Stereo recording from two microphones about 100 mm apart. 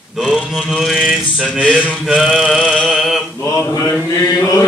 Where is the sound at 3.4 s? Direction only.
30° left (ahead or behind).